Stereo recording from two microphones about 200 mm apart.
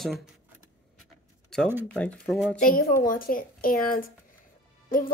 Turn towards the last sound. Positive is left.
turn(degrees=45)  # may be behind; listen again after turning